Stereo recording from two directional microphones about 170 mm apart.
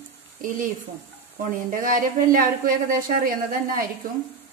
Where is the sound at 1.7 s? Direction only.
55° right (ahead or behind).